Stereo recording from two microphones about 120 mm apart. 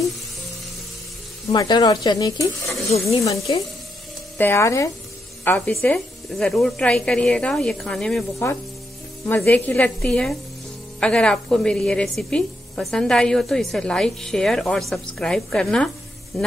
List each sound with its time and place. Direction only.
1.5 s speech: 35° left (ahead or behind)
5.7 s a woman's voice: 5° left (ahead or behind)
9.2 s a woman's voice: 20° left (ahead or behind)
16.3 s sizzle: 5° left (ahead or behind)